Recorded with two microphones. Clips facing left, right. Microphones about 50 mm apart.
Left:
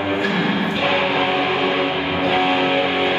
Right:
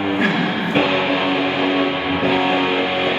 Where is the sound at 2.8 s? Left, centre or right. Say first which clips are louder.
Even; centre.